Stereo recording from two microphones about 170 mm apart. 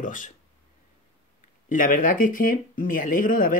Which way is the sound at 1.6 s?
50° left (ahead or behind).